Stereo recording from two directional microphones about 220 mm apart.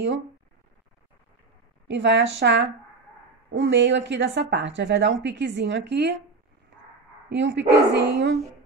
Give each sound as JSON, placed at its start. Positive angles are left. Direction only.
{"t": 1.9, "sound": "a woman's voice", "side_deg": -55}
{"t": 7.2, "sound": "a woman's voice", "side_deg": -55}